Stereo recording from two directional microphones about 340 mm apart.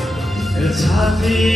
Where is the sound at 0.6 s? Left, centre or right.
Centre.